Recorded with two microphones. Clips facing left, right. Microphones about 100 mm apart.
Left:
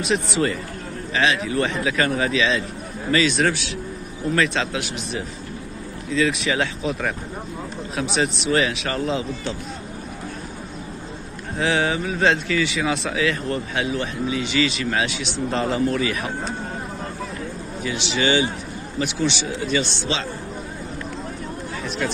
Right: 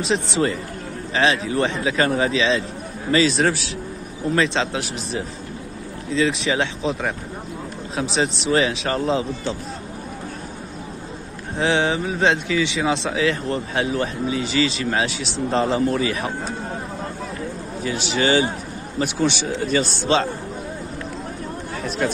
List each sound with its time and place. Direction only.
0.0 s speech: 30° right (ahead or behind)
11.5 s speech: 30° right (ahead or behind)
17.8 s speech: 45° right (ahead or behind)
21.8 s speech: 40° right (ahead or behind)